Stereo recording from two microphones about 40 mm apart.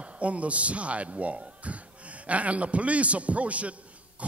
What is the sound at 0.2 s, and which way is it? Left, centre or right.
A man's voice, right.